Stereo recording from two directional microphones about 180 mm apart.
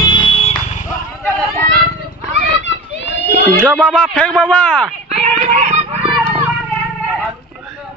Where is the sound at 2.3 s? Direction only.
40° right (ahead or behind).